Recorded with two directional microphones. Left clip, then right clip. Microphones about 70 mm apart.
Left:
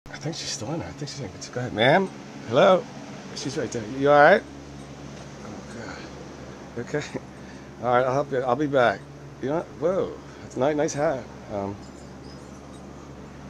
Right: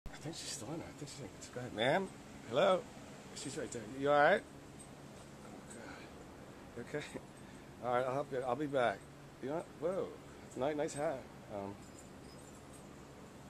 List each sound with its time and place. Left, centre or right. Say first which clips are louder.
0.2 s speech: left 14 dB; left
6.8 s speech: left 14 dB; left